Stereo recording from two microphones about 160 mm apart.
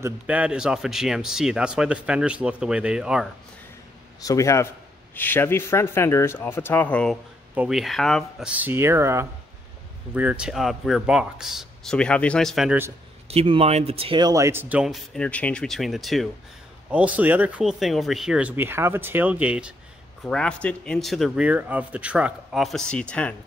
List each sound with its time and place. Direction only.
0.0 s speech: 10° right (ahead or behind)
4.2 s a man's voice: 20° left (ahead or behind)
7.5 s speech: 5° right (ahead or behind)
13.3 s speech: 35° right (ahead or behind)
14.2 s speech: 20° right (ahead or behind)
20.2 s speech: 5° left (ahead or behind)